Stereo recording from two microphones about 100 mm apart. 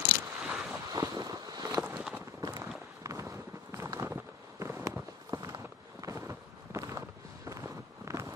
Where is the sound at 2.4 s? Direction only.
30° right (ahead or behind).